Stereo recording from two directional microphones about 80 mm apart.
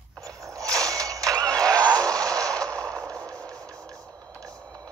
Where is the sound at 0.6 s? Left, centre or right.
Right.